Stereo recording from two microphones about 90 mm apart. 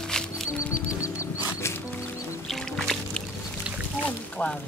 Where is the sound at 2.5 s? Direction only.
5° left (ahead or behind).